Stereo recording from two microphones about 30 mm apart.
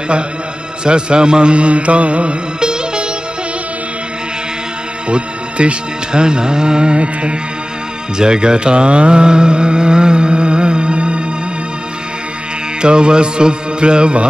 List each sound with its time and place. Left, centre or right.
0.8 s music: right
2.6 s music: right
5.1 s music: right
8.2 s speech: right
12.8 s music: right